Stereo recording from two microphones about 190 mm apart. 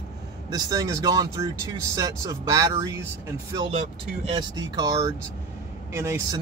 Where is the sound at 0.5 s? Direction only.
20° right (ahead or behind).